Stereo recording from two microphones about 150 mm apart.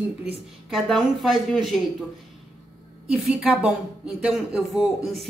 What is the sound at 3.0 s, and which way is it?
Speech, 5° right (ahead or behind).